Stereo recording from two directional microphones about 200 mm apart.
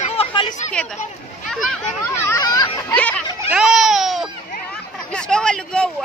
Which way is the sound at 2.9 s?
5° left (ahead or behind).